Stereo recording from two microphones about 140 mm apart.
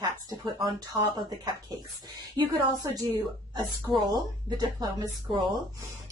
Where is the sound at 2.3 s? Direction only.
25° right (ahead or behind).